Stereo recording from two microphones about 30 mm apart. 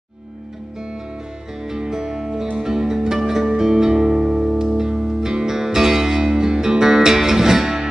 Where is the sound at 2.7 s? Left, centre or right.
Centre.